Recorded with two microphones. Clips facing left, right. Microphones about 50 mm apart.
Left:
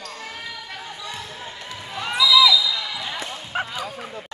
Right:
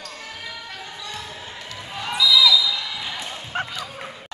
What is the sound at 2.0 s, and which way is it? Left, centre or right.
Basketball bounce, centre.